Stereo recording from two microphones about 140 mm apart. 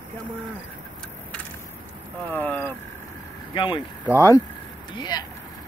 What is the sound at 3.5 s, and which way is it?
Speech, 35° left (ahead or behind).